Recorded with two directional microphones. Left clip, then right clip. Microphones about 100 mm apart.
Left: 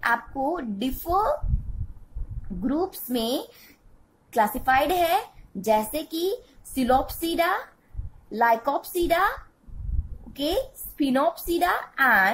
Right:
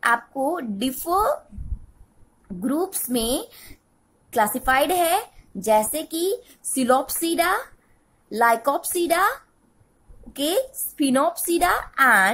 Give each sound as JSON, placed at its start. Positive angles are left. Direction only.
{"t": 0.0, "sound": "a woman's voice", "side_deg": -40}
{"t": 2.6, "sound": "a woman's voice", "side_deg": -40}